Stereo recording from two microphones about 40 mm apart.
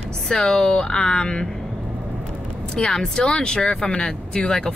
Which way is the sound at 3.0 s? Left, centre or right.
Left.